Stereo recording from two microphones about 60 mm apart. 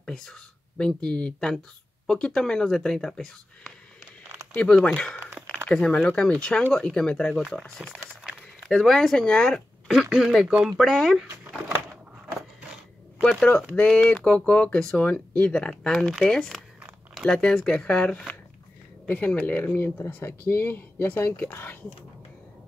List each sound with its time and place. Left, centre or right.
0.0 s speech: centre
7.3 s speech: centre
8.4 s a sound: centre
8.7 s speech: centre
10.1 s speech: centre
10.8 s speech: centre
13.2 s speech: centre
19.0 s speech: left